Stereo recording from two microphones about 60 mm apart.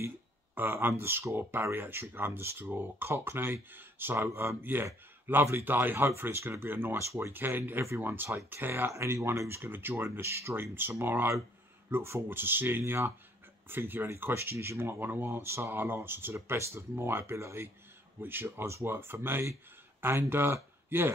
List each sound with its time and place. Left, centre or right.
0.6 s speech: right
4.3 s speech: right
8.9 s speech: right
9.7 s speech: right
18.2 s speech: right